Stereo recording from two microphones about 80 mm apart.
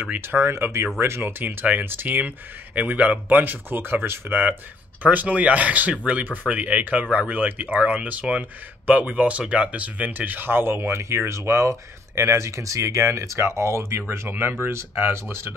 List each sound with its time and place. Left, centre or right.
0.0 s speech: right